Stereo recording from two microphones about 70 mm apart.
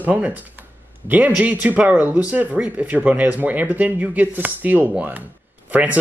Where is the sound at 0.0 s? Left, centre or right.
Right.